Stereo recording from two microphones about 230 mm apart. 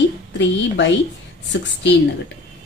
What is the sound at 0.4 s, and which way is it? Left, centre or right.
A woman's voice, left.